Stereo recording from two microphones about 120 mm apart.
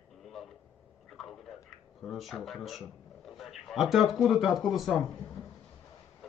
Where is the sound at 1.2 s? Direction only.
5° left (ahead or behind).